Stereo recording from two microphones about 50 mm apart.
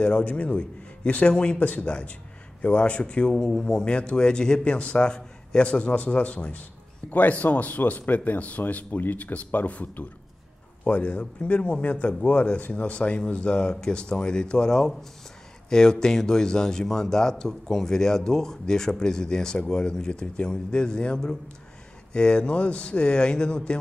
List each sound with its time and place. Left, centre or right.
0.0 s speech: left
3.3 s speech: centre
3.6 s speech: centre